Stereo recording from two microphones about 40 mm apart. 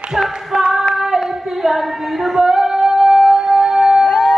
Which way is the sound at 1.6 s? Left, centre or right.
Centre.